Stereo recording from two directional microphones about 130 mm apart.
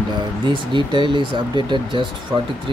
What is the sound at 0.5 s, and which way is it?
Speech, 40° right (ahead or behind).